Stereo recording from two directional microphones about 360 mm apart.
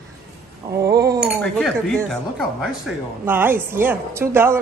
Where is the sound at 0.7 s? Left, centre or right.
Centre.